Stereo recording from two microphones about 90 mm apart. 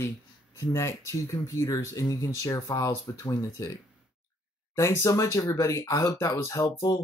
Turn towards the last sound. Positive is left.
turn(degrees=35)  # may be behind; listen again after turning